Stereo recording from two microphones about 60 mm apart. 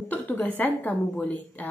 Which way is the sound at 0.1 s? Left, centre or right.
Left.